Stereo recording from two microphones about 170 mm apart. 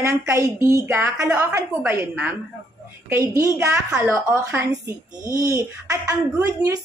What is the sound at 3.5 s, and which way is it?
A woman's voice, 10° right (ahead or behind).